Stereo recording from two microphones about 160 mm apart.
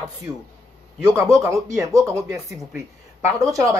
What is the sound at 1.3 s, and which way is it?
Speech, 20° right (ahead or behind).